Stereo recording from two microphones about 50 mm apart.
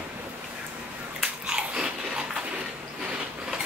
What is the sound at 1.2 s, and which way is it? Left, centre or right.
Biting, centre.